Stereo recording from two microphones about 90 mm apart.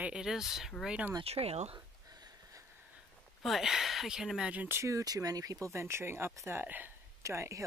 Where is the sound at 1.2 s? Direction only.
90° right.